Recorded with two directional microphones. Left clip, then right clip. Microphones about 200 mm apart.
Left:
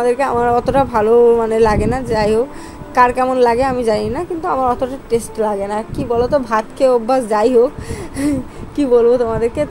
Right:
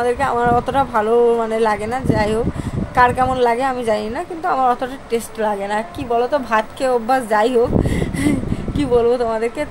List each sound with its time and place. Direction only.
0.0 s a woman's voice: 15° left (ahead or behind)